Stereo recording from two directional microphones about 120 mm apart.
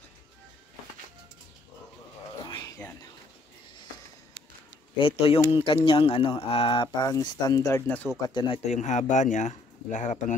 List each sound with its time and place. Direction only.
2.4 s a sound: 35° left (ahead or behind)
4.9 s speech: 50° left (ahead or behind)
7.0 s speech: 30° left (ahead or behind)
7.8 s speech: 15° left (ahead or behind)
8.6 s speech: 80° left